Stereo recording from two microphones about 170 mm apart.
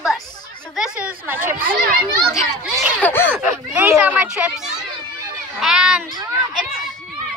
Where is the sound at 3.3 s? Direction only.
10° right (ahead or behind).